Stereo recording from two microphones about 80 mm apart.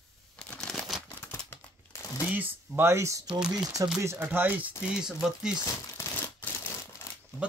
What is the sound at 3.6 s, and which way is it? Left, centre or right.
Speech, right.